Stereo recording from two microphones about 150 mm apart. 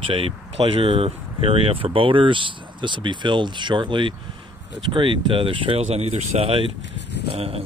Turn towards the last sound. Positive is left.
turn(degrees=-40)  # may be behind; listen again after turning